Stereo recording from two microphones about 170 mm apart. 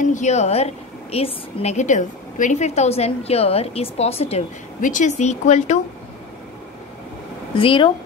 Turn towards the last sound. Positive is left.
turn(degrees=30)  # may be behind; listen again after turning